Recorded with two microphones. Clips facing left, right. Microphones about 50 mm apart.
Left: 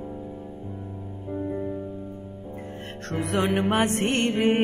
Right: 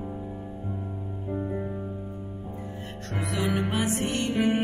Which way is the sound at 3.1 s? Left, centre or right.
Left.